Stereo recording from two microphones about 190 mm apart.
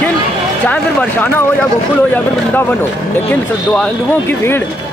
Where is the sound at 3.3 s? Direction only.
5° left (ahead or behind).